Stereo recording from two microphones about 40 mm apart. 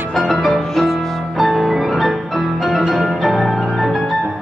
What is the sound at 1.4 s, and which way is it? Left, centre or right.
Music, centre.